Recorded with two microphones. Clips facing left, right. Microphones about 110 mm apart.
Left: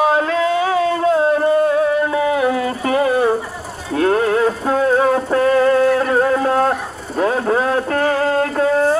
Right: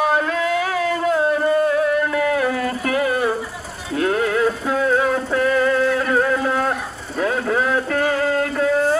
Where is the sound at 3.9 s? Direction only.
40° left (ahead or behind).